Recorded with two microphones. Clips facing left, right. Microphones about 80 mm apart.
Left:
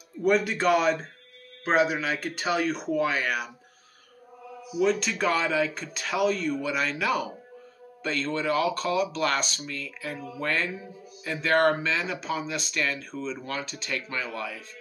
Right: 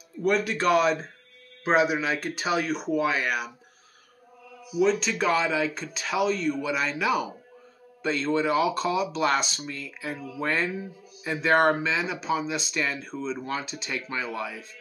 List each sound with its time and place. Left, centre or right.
0.2 s speech: centre
4.8 s speech: centre
6.6 s speech: centre
13.1 s speech: centre